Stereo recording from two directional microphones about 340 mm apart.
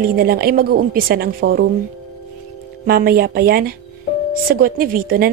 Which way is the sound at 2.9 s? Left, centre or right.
Right.